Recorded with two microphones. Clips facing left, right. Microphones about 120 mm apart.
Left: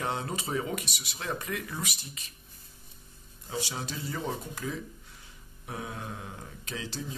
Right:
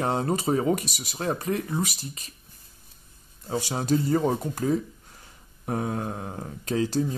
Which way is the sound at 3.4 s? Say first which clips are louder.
Right 9 dB; 45° right (ahead or behind).